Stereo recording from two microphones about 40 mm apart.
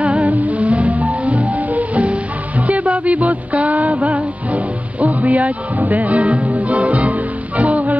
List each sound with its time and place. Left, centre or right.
0.0 s music: right